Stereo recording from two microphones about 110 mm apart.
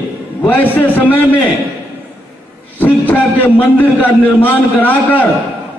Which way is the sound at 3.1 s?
15° left (ahead or behind).